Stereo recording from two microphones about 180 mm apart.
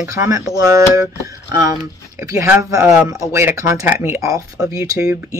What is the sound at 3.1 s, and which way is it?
Speech, 15° right (ahead or behind).